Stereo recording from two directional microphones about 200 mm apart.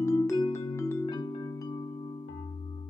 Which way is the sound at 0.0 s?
15° left (ahead or behind).